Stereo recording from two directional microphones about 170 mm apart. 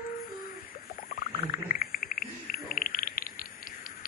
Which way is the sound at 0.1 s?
50° left (ahead or behind).